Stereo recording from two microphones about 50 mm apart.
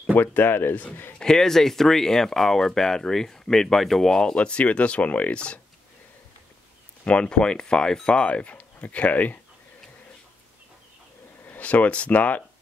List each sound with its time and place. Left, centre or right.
0.1 s speech: left
1.2 s speech: centre
7.1 s speech: left
11.4 s speech: left